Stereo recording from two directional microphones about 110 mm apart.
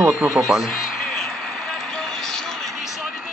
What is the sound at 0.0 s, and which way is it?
Speech, 5° right (ahead or behind).